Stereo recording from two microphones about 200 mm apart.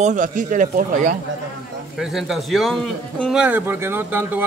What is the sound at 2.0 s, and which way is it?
A man's voice, centre (ahead or behind).